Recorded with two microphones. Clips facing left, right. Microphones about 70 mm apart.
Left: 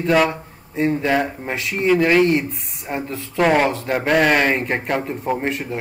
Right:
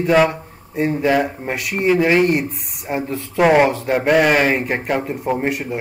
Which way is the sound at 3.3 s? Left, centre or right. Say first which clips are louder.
Right 3 dB; centre.